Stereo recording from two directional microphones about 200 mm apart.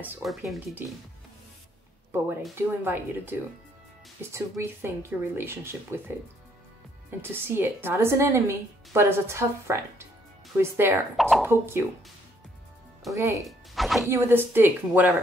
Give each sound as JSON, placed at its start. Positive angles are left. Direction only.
{"t": 0.0, "sound": "speech", "side_deg": 0}
{"t": 2.5, "sound": "speech", "side_deg": -10}
{"t": 11.1, "sound": "speech", "side_deg": 0}
{"t": 11.4, "sound": "speech", "side_deg": -10}
{"t": 13.1, "sound": "speech", "side_deg": -15}
{"t": 13.4, "sound": "speech", "side_deg": 0}
{"t": 14.0, "sound": "speech", "side_deg": -10}